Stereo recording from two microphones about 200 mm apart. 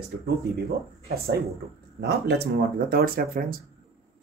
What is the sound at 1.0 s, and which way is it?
Speech, 50° right (ahead or behind).